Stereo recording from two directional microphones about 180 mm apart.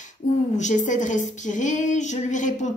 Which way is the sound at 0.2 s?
45° left (ahead or behind).